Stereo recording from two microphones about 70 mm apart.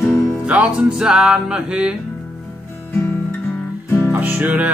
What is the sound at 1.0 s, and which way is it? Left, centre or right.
Music, centre.